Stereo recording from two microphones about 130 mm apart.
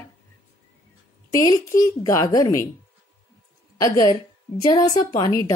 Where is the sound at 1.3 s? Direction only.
25° left (ahead or behind).